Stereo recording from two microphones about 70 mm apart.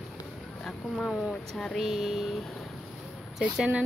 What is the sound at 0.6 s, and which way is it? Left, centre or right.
Speech, centre.